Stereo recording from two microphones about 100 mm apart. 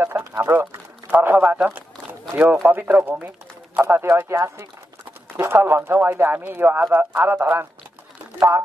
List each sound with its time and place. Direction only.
0.0 s a man's voice: 25° right (ahead or behind)